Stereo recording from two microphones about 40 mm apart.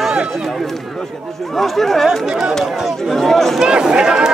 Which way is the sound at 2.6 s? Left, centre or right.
Centre.